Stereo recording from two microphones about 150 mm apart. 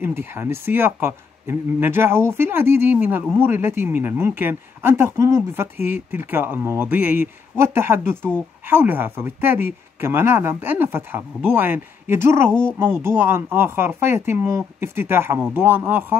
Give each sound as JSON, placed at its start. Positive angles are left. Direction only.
{"t": 0.0, "sound": "speech", "side_deg": -15}
{"t": 12.4, "sound": "speech", "side_deg": 5}
{"t": 12.7, "sound": "speech", "side_deg": -15}